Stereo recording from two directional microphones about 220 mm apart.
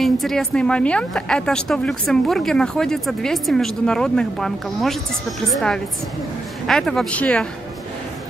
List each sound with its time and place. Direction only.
0.0 s a woman's voice: centre (ahead or behind)